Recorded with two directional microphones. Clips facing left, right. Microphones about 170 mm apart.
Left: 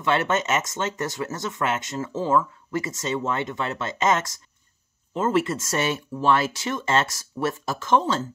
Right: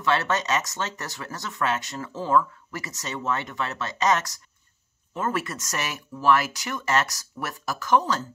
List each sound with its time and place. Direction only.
0.0 s speech: 25° left (ahead or behind)